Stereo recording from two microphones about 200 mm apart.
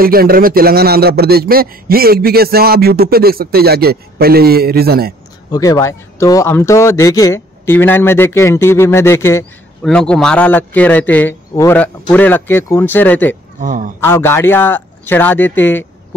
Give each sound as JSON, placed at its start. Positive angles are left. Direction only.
{"t": 0.0, "sound": "speech", "side_deg": -45}
{"t": 5.5, "sound": "speech", "side_deg": 15}
{"t": 13.6, "sound": "speech", "side_deg": -40}
{"t": 14.0, "sound": "speech", "side_deg": 10}